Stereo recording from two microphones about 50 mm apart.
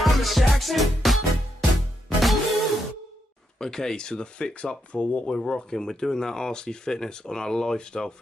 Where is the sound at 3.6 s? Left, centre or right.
Centre.